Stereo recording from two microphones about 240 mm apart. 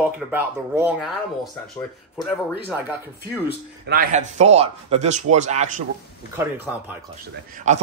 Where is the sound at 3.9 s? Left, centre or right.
Right.